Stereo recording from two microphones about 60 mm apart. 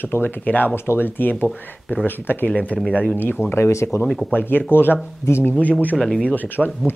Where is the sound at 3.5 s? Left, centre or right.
Left.